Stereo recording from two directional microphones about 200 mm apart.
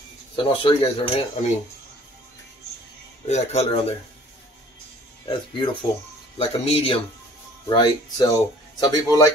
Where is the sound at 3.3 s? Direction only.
35° left (ahead or behind).